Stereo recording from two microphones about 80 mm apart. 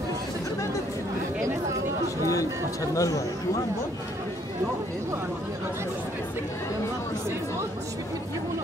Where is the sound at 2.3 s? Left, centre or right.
Left.